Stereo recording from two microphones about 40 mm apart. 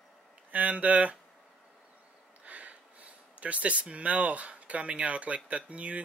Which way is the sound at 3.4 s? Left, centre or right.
Right.